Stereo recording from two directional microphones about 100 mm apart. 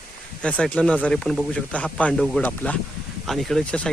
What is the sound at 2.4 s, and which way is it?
Speech, 15° left (ahead or behind).